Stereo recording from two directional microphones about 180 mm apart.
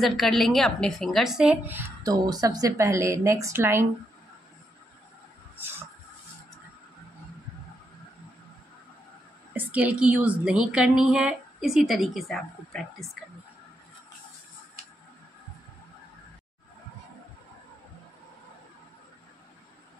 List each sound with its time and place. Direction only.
0.0 s a woman's voice: centre (ahead or behind)
2.0 s a woman's voice: 20° right (ahead or behind)
5.6 s a sound: 10° right (ahead or behind)
9.7 s a woman's voice: 10° right (ahead or behind)